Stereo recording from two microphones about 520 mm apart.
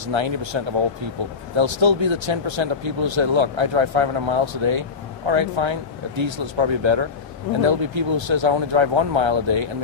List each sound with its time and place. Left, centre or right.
0.1 s speech: right
1.6 s speech: right